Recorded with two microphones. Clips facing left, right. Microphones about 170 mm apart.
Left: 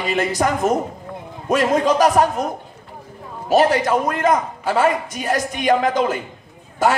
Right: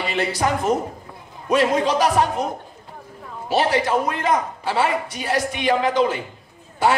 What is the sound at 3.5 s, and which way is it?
A man's voice, 45° left (ahead or behind).